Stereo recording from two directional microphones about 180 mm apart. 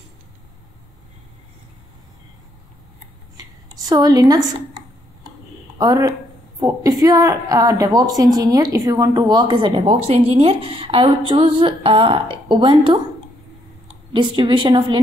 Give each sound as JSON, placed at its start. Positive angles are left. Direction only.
{"t": 3.3, "sound": "speech", "side_deg": -20}
{"t": 5.8, "sound": "speech", "side_deg": -20}
{"t": 14.1, "sound": "speech", "side_deg": -25}